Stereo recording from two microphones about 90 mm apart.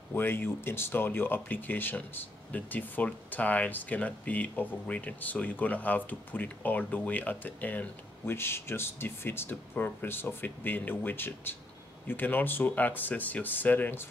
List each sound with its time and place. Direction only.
0.1 s speech: 25° left (ahead or behind)